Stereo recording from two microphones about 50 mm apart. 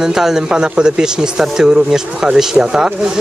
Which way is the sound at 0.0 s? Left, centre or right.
Centre.